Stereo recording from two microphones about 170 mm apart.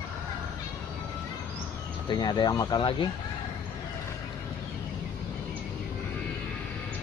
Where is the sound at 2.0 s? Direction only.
25° left (ahead or behind).